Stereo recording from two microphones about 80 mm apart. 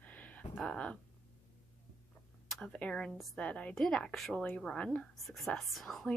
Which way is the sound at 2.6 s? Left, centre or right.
Centre.